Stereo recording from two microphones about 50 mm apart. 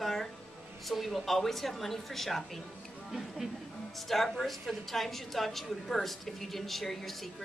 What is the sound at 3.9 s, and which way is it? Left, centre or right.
A woman's voice, centre.